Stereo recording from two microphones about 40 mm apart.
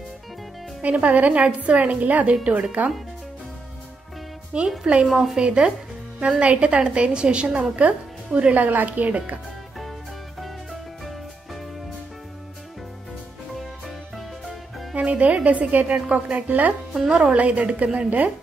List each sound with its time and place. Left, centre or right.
0.8 s a woman's voice: right
4.6 s a woman's voice: right
8.5 s a woman's voice: right
10.4 s music: centre
13.6 s music: centre
15.0 s a woman's voice: right
16.4 s speech: right
17.1 s a woman's voice: right
17.9 s a woman's voice: right